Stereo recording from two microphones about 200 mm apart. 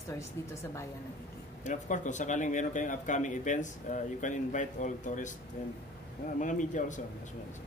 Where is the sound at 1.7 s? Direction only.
40° left (ahead or behind).